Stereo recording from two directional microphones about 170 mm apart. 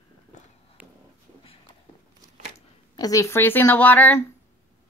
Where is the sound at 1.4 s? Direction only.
30° left (ahead or behind).